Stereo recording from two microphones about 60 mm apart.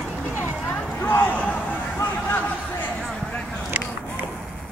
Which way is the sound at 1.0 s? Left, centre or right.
Left.